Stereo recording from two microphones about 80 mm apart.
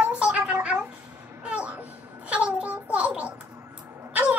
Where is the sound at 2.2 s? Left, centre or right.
Centre.